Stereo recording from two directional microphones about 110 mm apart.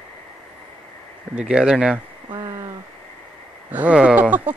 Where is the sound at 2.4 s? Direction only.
35° right (ahead or behind).